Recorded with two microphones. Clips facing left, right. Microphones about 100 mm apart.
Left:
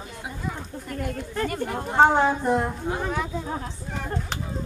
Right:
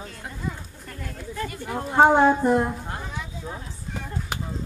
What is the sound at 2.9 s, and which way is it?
Speech, 60° left (ahead or behind).